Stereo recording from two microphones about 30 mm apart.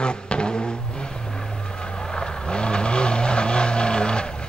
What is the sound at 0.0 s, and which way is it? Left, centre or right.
Vehicle, left.